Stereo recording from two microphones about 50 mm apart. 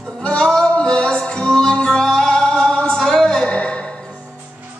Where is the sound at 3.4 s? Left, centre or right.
Left.